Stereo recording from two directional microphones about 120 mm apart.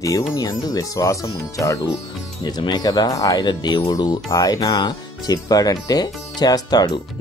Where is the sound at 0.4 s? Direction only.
30° left (ahead or behind).